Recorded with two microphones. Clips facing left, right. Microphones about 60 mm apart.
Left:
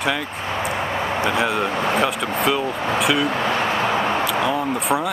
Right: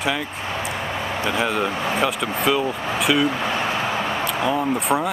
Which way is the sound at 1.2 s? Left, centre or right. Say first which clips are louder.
Even; centre.